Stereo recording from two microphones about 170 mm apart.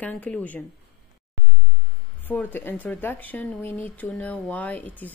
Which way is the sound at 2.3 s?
10° left (ahead or behind).